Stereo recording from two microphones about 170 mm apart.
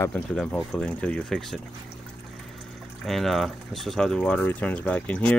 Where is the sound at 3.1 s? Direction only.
Centre (ahead or behind).